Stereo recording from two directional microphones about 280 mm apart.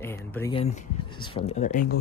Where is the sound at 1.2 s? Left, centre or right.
Centre.